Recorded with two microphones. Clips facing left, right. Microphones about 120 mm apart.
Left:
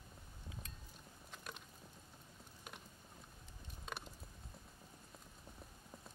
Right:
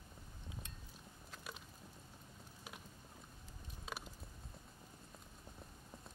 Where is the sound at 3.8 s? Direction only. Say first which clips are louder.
Even; 5° right (ahead or behind).